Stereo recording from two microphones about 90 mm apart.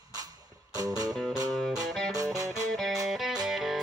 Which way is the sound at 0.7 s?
45° right (ahead or behind).